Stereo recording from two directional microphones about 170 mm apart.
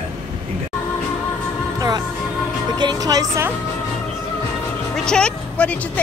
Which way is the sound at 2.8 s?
25° right (ahead or behind).